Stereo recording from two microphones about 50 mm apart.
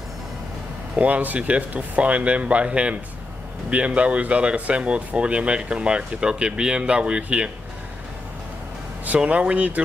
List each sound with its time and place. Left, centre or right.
0.9 s speech: right
9.0 s speech: right